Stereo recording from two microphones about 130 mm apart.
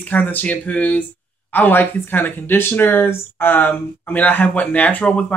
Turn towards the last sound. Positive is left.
turn(degrees=10)  # may be behind; listen again after turning